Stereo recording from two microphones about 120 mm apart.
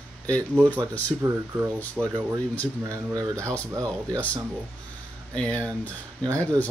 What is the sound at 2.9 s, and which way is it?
Speech, 30° right (ahead or behind).